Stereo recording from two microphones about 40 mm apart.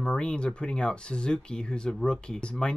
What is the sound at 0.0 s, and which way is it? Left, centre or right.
Speech, left.